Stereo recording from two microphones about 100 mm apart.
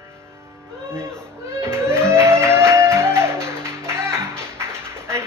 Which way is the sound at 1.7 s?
25° right (ahead or behind).